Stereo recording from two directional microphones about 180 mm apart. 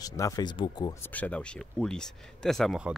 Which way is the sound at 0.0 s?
20° left (ahead or behind).